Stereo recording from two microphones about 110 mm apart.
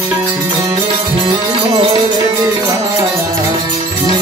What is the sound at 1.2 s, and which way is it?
Music, 45° right (ahead or behind).